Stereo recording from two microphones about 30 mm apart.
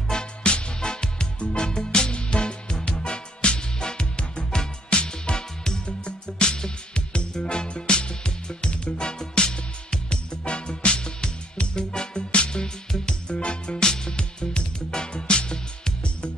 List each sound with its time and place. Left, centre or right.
0.1 s music: left
12.3 s music: left